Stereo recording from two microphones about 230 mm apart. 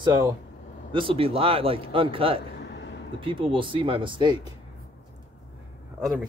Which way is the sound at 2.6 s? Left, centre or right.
Left.